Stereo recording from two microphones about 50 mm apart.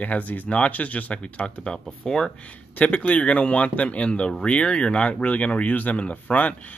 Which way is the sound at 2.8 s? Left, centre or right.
Left.